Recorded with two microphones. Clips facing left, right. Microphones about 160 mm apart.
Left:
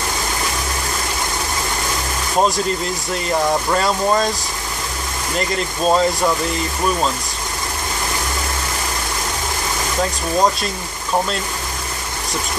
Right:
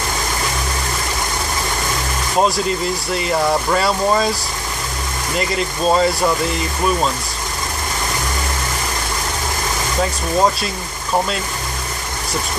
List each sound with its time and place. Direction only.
3.2 s speech: 5° right (ahead or behind)
5.5 s speech: centre (ahead or behind)